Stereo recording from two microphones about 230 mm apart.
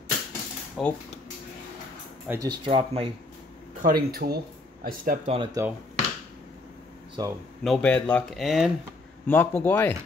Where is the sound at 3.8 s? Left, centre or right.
Right; by 5.8 s centre.